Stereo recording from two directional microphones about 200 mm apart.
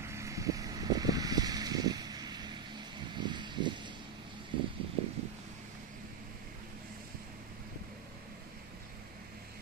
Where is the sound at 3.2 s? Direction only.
20° right (ahead or behind).